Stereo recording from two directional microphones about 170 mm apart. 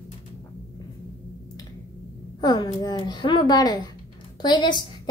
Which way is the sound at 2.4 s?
25° left (ahead or behind).